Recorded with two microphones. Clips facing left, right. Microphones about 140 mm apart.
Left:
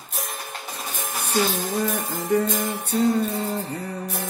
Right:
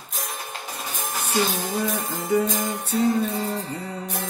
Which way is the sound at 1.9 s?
Centre (ahead or behind).